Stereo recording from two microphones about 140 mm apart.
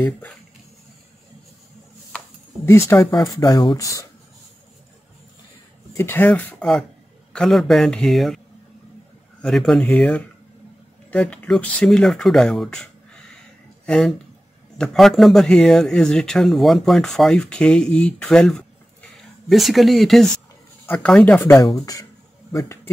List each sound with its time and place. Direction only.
2.6 s speech: 20° left (ahead or behind)
3.3 s speech: 30° left (ahead or behind)
5.9 s speech: 15° left (ahead or behind)
7.3 s speech: centre (ahead or behind)
9.4 s speech: 5° left (ahead or behind)
22.5 s speech: 25° left (ahead or behind)